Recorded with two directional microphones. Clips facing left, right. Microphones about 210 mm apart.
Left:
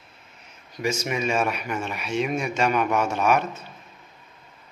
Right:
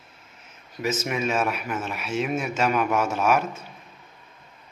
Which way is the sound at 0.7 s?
5° right (ahead or behind).